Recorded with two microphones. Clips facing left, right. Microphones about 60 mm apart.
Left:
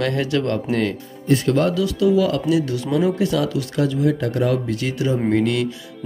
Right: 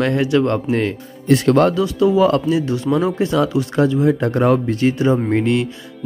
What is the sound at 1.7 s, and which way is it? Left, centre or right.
Speech, right.